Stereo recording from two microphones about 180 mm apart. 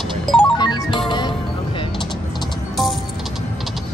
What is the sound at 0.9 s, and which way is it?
Music, 25° left (ahead or behind).